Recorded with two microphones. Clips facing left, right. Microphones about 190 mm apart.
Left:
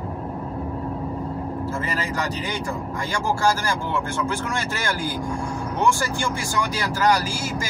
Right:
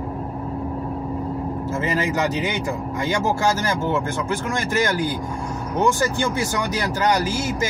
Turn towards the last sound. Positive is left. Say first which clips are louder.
# right 5 dB
turn(degrees=-20)  # may be behind; listen again after turning